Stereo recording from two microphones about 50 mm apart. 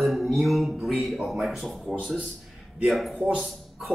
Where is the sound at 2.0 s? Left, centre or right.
Right.